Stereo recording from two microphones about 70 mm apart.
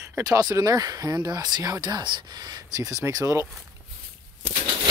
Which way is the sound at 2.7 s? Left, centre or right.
Right.